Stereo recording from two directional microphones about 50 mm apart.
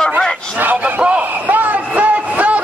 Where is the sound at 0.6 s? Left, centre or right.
Right.